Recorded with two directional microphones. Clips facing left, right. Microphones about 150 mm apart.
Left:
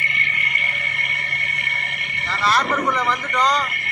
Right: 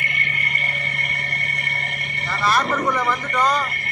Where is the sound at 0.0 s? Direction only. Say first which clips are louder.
Even; 50° right (ahead or behind).